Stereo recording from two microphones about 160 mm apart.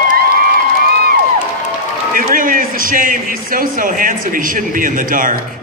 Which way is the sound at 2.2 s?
60° right (ahead or behind).